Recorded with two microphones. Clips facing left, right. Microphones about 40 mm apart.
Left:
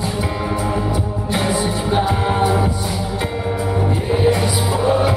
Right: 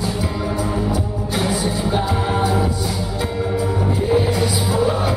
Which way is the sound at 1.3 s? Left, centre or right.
Left.